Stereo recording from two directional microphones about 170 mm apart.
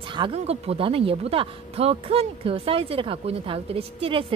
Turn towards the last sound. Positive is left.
turn(degrees=-30)  # may be behind; listen again after turning